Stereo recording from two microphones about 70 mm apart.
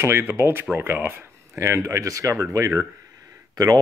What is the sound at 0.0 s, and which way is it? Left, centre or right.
Speech, right.